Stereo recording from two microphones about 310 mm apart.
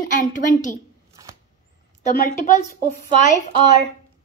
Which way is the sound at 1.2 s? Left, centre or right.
Centre.